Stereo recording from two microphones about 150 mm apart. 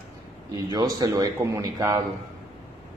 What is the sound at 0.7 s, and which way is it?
Speech, 25° right (ahead or behind).